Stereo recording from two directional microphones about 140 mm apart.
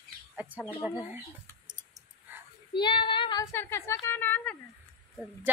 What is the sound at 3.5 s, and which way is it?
Speech, 20° left (ahead or behind).